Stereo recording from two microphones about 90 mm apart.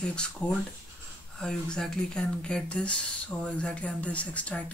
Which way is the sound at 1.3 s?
10° left (ahead or behind).